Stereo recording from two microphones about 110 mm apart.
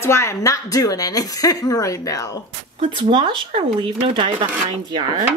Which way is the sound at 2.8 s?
55° right (ahead or behind).